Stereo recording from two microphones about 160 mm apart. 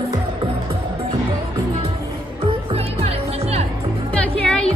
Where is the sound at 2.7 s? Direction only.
40° right (ahead or behind).